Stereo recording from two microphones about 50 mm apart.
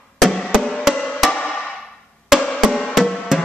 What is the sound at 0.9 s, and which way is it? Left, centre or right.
Music, centre.